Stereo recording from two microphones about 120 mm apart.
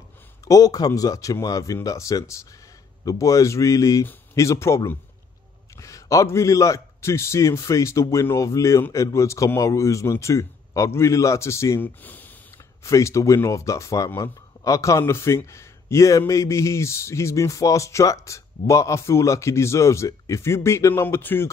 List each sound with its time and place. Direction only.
0.5 s speech: 30° left (ahead or behind); by 12.3 s 15° left (ahead or behind)
12.8 s speech: 25° left (ahead or behind)